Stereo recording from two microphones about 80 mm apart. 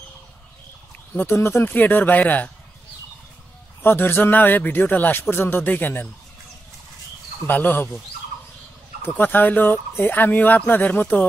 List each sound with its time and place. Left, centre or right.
1.1 s speech: left
3.8 s speech: left
7.4 s speech: left
9.0 s speech: left